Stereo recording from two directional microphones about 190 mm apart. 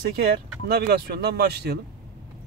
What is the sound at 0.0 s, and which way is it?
Speech, 55° right (ahead or behind).